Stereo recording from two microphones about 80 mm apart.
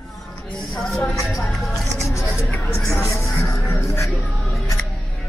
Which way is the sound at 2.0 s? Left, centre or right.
Left.